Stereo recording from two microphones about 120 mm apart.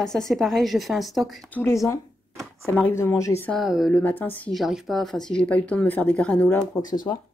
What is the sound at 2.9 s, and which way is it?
Speech, 20° left (ahead or behind).